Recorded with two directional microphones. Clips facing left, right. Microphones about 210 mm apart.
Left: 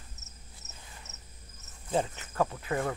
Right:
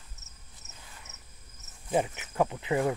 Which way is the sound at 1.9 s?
15° right (ahead or behind).